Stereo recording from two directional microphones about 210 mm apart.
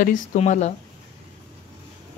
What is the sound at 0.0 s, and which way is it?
Speech, 40° left (ahead or behind).